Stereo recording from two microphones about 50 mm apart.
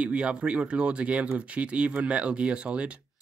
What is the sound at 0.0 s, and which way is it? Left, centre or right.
Speech, right.